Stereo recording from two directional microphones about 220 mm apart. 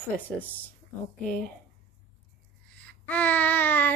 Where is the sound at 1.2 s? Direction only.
35° left (ahead or behind).